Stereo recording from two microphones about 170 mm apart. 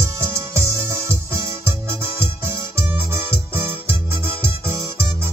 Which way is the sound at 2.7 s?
15° right (ahead or behind).